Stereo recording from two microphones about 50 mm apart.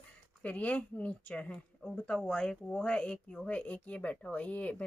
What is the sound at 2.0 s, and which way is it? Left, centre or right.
Speech, centre.